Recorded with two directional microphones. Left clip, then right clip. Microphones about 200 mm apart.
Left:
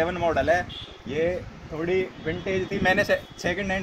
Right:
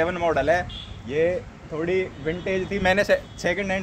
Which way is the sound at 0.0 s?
15° right (ahead or behind).